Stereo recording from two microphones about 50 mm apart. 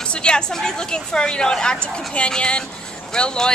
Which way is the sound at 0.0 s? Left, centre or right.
Centre.